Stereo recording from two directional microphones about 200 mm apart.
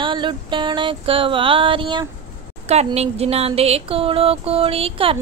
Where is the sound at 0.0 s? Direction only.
25° right (ahead or behind).